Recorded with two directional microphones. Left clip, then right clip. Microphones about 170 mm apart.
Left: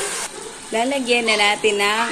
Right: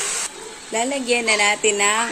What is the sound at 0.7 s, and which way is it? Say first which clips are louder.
Speech: left 2 dB; 20° right (ahead or behind).